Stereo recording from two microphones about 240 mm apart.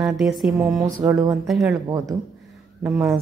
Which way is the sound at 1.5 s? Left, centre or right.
Centre.